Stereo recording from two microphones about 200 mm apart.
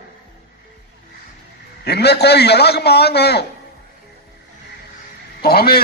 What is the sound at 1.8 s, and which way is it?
A man's voice, 55° left (ahead or behind).